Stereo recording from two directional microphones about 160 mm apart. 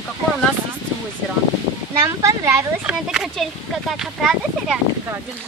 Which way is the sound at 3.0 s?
5° right (ahead or behind).